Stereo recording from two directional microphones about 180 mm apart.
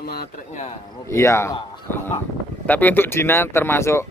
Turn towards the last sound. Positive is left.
turn(degrees=15)  # may be behind; listen again after turning